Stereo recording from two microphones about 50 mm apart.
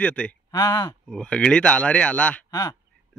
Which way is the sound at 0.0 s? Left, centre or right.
Left.